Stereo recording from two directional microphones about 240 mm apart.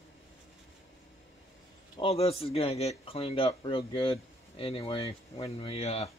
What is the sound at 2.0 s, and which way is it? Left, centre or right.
Speech, left.